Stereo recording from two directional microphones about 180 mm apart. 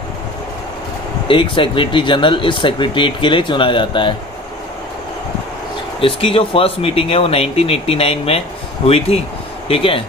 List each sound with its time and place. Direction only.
1.2 s speech: 30° left (ahead or behind)
5.9 s speech: 30° left (ahead or behind)